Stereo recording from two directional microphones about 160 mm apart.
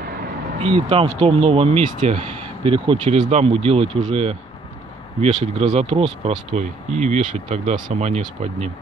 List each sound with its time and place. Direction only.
0.6 s speech: 35° right (ahead or behind)